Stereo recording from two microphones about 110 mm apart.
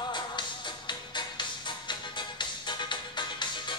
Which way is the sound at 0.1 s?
45° left (ahead or behind).